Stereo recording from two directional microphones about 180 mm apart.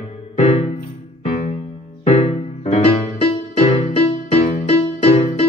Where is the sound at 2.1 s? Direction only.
35° left (ahead or behind).